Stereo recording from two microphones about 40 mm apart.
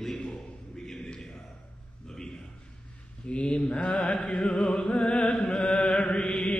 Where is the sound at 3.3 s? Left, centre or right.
Left.